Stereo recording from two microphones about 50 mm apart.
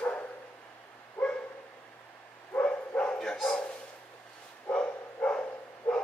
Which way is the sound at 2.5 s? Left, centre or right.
Left.